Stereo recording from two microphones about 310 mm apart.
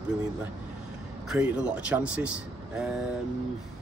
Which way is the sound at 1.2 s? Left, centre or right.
Centre.